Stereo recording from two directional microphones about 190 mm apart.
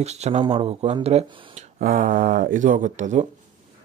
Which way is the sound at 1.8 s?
45° right (ahead or behind).